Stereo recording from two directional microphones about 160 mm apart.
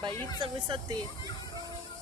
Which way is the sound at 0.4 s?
30° right (ahead or behind).